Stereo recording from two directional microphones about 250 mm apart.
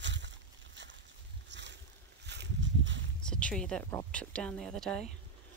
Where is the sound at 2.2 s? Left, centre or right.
Right.